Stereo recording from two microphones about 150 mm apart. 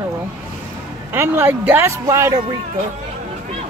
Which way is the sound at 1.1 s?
15° right (ahead or behind).